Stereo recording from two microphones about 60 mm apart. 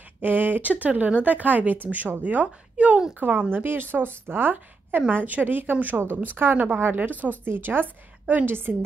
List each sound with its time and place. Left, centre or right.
0.2 s speech: right